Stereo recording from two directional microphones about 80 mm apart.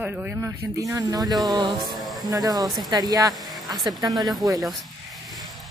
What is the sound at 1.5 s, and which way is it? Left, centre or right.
Speech, right.